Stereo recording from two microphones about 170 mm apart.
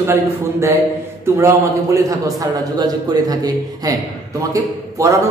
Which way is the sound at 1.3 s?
15° right (ahead or behind).